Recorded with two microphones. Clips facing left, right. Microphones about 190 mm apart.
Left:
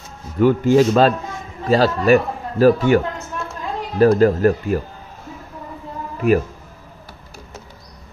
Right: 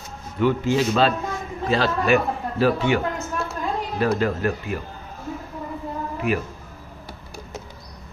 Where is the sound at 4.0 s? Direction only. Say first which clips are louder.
Left 10 dB; 40° left (ahead or behind).